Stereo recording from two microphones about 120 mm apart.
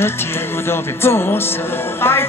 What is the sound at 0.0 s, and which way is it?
Speech, 20° left (ahead or behind).